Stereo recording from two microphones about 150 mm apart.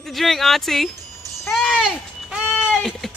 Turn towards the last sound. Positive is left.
turn(degrees=0)  # may be behind; listen again after turning